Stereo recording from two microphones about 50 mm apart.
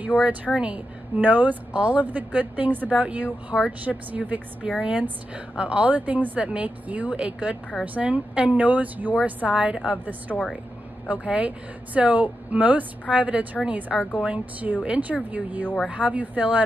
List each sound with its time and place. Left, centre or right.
0.1 s speech: left
0.6 s a woman's voice: right
4.6 s a woman's voice: centre
10.3 s speech: centre
11.1 s a woman's voice: right